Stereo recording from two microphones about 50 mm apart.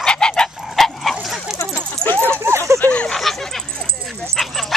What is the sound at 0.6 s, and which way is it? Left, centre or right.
Dog, centre.